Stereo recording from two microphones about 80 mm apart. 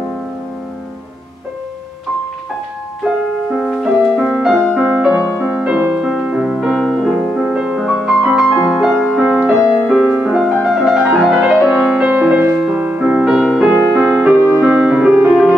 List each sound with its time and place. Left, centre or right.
3.8 s music: centre
5.4 s music: centre
10.3 s music: centre